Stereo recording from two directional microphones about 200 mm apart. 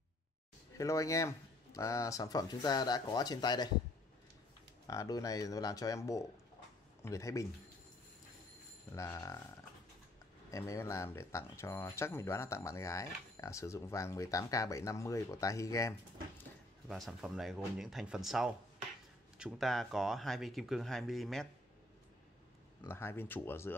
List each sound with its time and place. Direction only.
0.7 s speech: 15° left (ahead or behind)
4.8 s speech: 15° left (ahead or behind)
8.9 s speech: 15° left (ahead or behind)
10.5 s speech: 15° left (ahead or behind)
16.8 s speech: centre (ahead or behind)
22.8 s speech: 10° left (ahead or behind)